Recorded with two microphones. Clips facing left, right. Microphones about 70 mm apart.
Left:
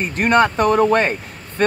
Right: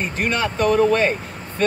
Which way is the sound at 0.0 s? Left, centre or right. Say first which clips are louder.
Left 7 dB; left.